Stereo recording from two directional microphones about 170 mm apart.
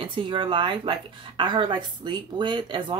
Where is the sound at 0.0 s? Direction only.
30° right (ahead or behind).